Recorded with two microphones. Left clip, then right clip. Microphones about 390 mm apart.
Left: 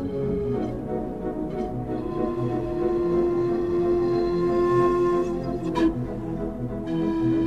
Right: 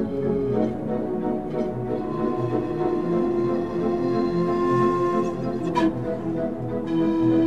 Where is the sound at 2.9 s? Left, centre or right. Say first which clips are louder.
Left 3 dB; left.